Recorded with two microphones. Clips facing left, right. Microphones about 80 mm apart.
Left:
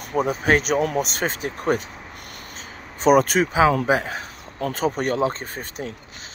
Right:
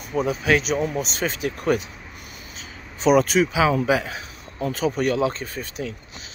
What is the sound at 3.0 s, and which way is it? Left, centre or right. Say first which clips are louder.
Speech: left 1 dB; left.